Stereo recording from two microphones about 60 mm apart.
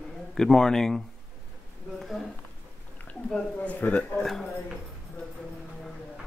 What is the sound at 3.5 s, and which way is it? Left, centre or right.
Speech, left.